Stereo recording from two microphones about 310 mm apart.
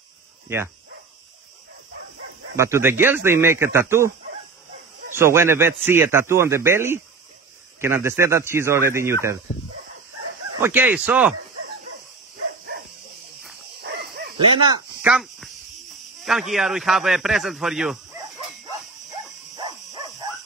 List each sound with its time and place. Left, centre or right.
2.5 s a man's voice: centre
5.1 s a man's voice: centre
10.6 s a man's voice: centre
13.7 s dog: right
14.7 s a man's voice: centre
19.5 s dog: centre